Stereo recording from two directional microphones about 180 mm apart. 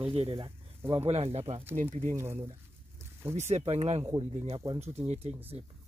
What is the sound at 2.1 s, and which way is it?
Speech, 15° right (ahead or behind).